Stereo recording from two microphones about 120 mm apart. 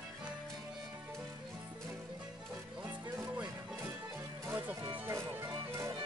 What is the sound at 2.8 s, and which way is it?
Music, 15° right (ahead or behind).